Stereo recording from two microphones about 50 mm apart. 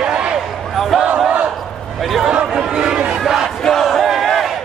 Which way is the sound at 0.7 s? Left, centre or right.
Centre.